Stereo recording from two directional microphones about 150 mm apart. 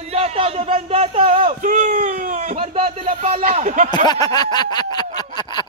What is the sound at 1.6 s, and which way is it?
Speech, 60° right (ahead or behind).